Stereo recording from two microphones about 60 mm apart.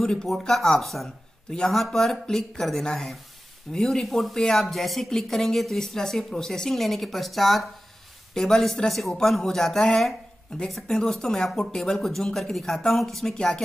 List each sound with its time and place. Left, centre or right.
0.0 s speech: centre